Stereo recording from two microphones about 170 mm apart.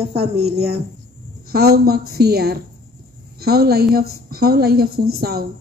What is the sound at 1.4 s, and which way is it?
A woman's voice, 65° right (ahead or behind).